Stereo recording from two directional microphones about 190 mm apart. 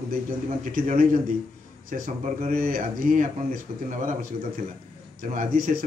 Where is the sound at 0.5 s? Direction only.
45° right (ahead or behind).